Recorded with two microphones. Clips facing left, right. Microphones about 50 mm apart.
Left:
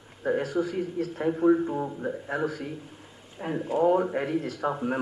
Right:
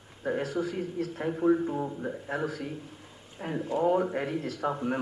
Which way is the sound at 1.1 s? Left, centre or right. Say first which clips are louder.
Left 4 dB; centre.